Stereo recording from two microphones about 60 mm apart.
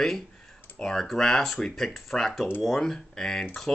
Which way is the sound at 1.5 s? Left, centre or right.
Centre.